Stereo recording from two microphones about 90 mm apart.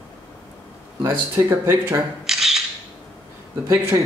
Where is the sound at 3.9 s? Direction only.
40° right (ahead or behind).